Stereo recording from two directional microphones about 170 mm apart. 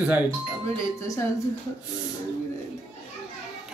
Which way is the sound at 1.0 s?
15° left (ahead or behind).